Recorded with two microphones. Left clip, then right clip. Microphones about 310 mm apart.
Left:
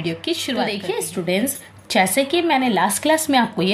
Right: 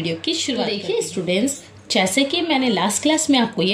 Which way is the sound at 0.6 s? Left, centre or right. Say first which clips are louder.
Right 2 dB; left.